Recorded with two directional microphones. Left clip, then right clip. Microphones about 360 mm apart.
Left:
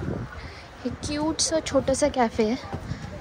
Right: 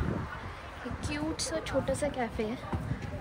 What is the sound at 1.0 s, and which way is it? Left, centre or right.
Speech, centre.